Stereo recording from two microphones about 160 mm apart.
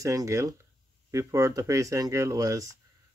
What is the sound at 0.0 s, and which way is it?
Speech, 20° right (ahead or behind).